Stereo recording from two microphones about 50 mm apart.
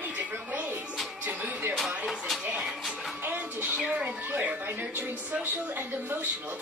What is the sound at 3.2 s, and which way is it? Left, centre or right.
A woman's voice, right.